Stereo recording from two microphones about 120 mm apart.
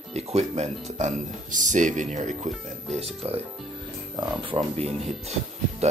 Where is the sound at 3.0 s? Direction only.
55° right (ahead or behind).